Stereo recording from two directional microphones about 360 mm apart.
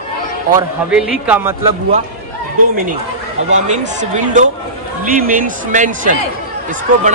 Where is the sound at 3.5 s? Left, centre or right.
Centre.